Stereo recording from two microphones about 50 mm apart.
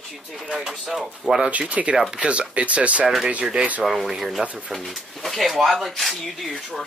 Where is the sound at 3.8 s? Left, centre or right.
Centre.